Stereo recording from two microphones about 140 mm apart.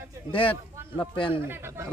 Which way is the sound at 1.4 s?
20° right (ahead or behind).